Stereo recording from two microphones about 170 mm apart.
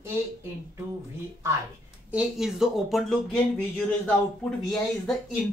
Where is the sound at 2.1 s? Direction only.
5° right (ahead or behind).